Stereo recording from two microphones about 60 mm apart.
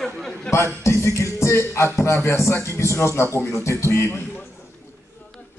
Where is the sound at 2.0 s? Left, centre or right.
Left.